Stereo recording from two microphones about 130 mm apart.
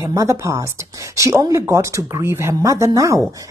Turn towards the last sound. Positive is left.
turn(degrees=-25)  # may be behind; listen again after turning